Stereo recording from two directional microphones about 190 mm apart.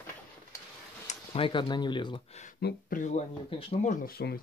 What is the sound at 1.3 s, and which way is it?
Speech, 25° left (ahead or behind).